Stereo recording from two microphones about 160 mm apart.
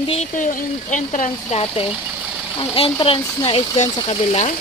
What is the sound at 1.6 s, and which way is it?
Speech, 35° left (ahead or behind).